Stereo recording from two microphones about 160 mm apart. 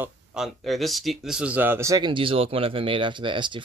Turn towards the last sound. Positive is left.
turn(degrees=-30)  # may be behind; listen again after turning